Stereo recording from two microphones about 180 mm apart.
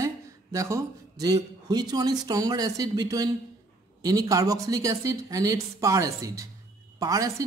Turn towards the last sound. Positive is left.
turn(degrees=-20)  # may be behind; listen again after turning